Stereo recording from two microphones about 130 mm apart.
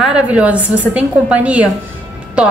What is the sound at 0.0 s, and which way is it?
A woman's voice, 10° right (ahead or behind).